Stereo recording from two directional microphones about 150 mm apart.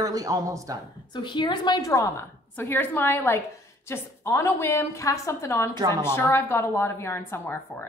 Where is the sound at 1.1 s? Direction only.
30° left (ahead or behind).